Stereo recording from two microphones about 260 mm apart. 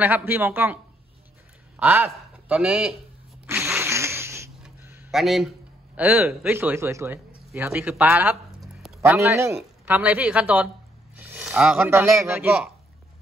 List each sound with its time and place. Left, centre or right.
0.0 s speech: centre
1.8 s a man's voice: centre
3.4 s a sound: centre
5.9 s speech: centre